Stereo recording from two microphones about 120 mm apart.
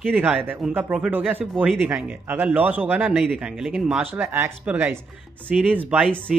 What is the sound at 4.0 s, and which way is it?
Speech, 20° right (ahead or behind).